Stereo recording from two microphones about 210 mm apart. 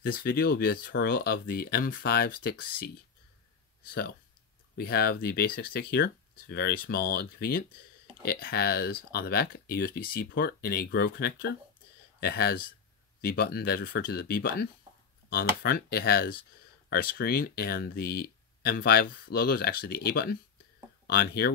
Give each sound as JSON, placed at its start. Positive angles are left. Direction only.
{"t": 0.0, "sound": "speech", "side_deg": 45}
{"t": 4.7, "sound": "speech", "side_deg": 45}